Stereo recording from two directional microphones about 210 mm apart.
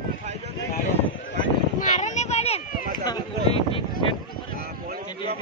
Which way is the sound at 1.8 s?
35° left (ahead or behind).